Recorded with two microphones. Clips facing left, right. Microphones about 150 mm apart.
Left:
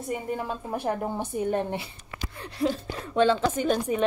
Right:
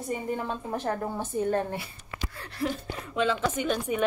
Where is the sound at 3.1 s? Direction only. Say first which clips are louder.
Left 5 dB; 35° left (ahead or behind).